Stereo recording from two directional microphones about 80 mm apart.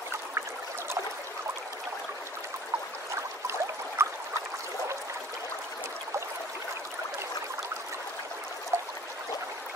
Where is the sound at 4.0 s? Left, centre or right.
Right.